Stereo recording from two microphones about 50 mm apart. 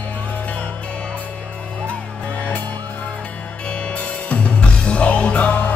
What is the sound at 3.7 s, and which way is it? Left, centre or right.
Music, left.